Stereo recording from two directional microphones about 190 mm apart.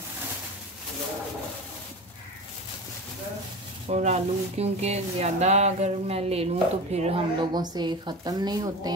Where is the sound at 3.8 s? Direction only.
35° right (ahead or behind).